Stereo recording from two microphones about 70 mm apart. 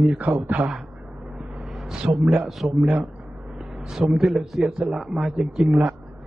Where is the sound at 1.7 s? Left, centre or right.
Centre.